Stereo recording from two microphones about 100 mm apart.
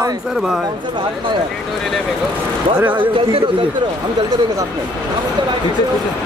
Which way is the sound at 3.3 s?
65° right (ahead or behind).